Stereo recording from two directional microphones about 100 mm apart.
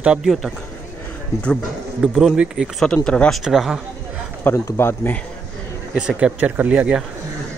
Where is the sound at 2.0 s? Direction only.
5° right (ahead or behind).